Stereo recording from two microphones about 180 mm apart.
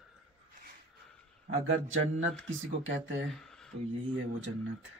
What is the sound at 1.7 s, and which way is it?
Speech, 90° right.